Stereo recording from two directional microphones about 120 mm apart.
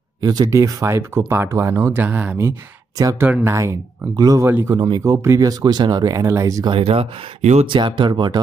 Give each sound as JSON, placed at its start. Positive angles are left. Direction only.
{"t": 0.2, "sound": "speech", "side_deg": -35}
{"t": 4.2, "sound": "speech", "side_deg": -30}
{"t": 4.5, "sound": "speech", "side_deg": -15}
{"t": 4.7, "sound": "speech", "side_deg": -35}
{"t": 5.0, "sound": "speech", "side_deg": -25}
{"t": 6.7, "sound": "speech", "side_deg": -55}
{"t": 7.6, "sound": "speech", "side_deg": -45}